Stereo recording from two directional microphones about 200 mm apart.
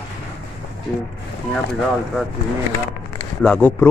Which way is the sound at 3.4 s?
5° left (ahead or behind).